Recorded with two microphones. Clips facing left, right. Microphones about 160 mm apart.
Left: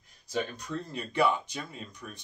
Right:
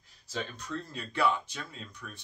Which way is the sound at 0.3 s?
15° left (ahead or behind).